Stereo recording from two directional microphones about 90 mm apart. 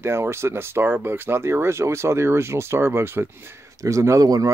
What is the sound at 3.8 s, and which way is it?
Speech, 35° right (ahead or behind).